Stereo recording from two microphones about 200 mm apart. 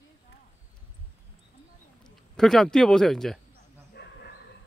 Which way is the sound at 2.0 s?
Centre (ahead or behind).